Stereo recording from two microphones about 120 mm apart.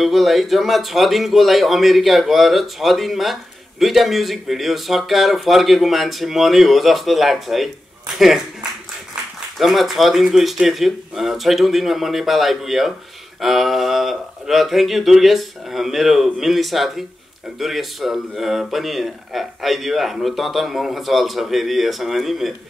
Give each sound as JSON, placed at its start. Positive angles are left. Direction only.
{"t": 0.0, "sound": "speech", "side_deg": 0}
{"t": 9.6, "sound": "speech", "side_deg": 0}